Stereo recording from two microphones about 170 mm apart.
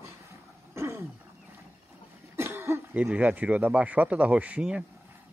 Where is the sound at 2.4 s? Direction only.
15° right (ahead or behind).